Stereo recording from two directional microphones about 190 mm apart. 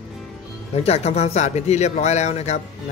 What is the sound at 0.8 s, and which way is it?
Speech, 35° left (ahead or behind).